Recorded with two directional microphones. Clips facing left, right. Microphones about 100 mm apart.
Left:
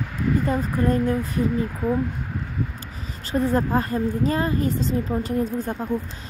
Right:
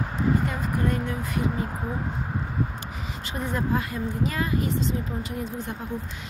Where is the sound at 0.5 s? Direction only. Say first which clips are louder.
Left 5 dB; 40° left (ahead or behind).